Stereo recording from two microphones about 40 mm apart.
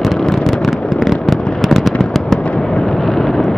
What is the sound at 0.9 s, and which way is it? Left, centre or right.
Fireworks, centre.